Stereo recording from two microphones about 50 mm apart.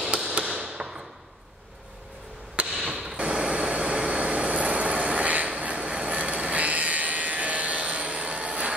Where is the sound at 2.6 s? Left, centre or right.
Right.